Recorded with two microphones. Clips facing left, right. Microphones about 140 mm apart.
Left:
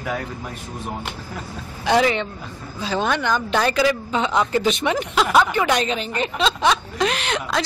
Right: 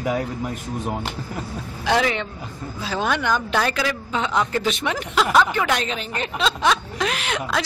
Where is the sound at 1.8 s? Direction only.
Centre (ahead or behind).